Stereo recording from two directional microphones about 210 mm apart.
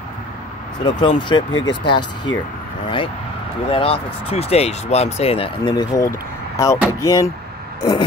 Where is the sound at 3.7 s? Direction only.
25° left (ahead or behind).